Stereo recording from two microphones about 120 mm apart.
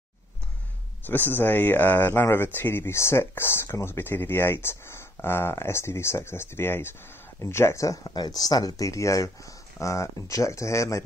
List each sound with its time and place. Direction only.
1.0 s speech: 15° left (ahead or behind)